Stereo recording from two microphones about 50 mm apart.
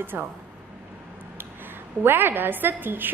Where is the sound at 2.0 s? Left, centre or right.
Right.